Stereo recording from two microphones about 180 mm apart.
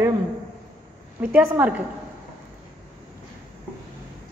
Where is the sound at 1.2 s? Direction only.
10° right (ahead or behind).